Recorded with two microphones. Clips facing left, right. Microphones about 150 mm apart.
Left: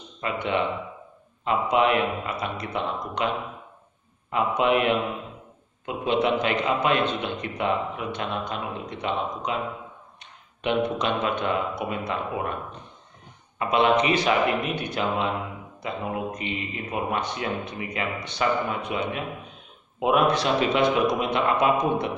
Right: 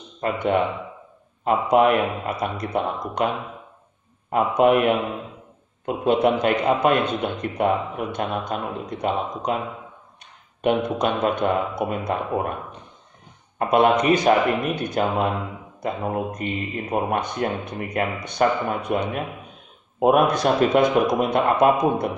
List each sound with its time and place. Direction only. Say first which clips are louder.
0.2 s a man's voice: right 5 dB; 50° right (ahead or behind)
4.3 s a man's voice: right 5 dB; 50° right (ahead or behind)
10.6 s a man's voice: right 4 dB; 45° right (ahead or behind)
13.6 s a man's voice: right 3 dB; 50° right (ahead or behind)